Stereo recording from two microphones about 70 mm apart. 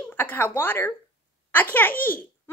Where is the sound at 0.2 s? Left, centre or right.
Left.